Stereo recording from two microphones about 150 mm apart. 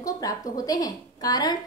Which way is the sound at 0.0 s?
25° left (ahead or behind).